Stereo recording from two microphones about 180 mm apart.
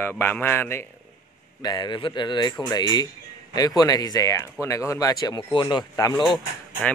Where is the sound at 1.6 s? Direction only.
25° left (ahead or behind).